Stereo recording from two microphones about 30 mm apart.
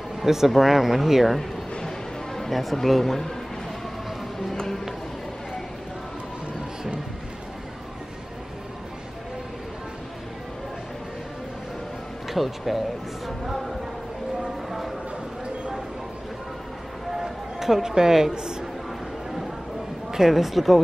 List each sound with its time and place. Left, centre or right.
0.2 s speech: centre
12.3 s speech: centre
14.7 s a sound: centre
17.2 s a sound: centre
17.8 s speech: centre
20.2 s speech: centre